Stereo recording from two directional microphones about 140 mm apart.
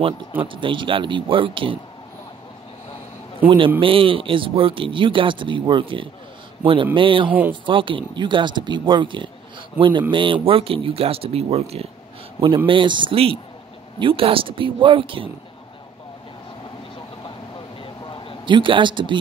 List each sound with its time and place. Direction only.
0.4 s speech: 40° right (ahead or behind)
3.4 s speech: 40° right (ahead or behind)
17.8 s a sound: 35° left (ahead or behind)
18.4 s speech: 35° right (ahead or behind)